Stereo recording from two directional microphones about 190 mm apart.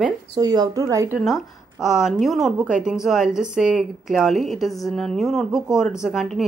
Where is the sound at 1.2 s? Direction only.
Centre (ahead or behind).